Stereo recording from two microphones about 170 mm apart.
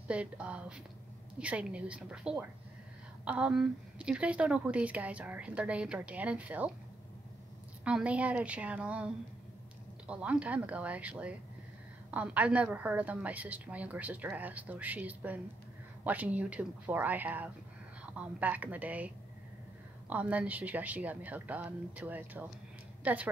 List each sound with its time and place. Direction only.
0.1 s a woman's voice: 5° right (ahead or behind)
7.8 s a woman's voice: 5° right (ahead or behind)